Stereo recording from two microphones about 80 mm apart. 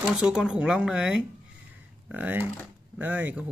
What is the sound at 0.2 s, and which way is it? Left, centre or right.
Speech, centre.